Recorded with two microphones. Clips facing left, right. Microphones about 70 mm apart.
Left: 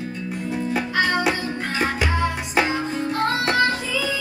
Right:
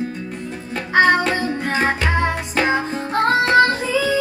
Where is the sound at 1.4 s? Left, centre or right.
Right.